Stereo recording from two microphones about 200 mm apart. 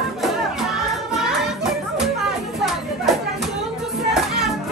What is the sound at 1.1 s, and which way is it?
Music, centre (ahead or behind).